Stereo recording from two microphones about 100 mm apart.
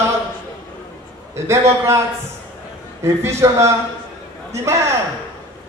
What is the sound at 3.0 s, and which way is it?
A man's voice, 30° right (ahead or behind).